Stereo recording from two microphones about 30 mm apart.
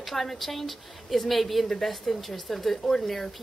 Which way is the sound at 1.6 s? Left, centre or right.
Centre.